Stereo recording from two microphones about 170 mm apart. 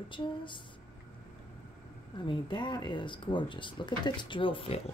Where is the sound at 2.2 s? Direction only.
25° left (ahead or behind).